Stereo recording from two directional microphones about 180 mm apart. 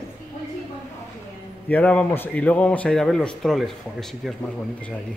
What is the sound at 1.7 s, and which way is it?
Speech, 5° left (ahead or behind).